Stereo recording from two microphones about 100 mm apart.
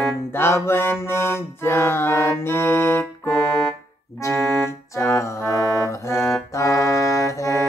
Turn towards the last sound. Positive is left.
turn(degrees=30)  # may be behind; listen again after turning